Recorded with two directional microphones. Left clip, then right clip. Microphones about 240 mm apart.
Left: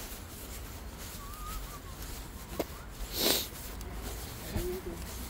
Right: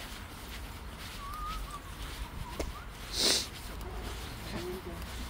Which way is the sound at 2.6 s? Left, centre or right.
Left.